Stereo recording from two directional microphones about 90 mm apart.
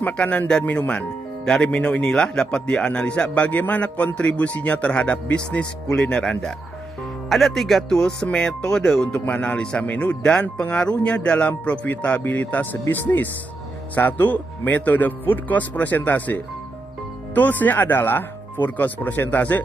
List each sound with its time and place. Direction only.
0.0 s speech: 15° left (ahead or behind)